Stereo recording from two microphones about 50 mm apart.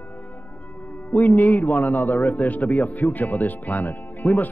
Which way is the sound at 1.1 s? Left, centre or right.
Left.